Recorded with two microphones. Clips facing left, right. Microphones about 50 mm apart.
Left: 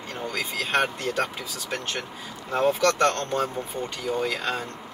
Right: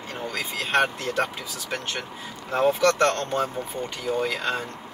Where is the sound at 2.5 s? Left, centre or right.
Centre.